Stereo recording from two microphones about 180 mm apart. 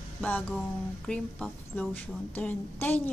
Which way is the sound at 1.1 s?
5° left (ahead or behind).